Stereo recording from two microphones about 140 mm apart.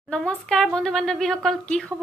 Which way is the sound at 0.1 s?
5° left (ahead or behind).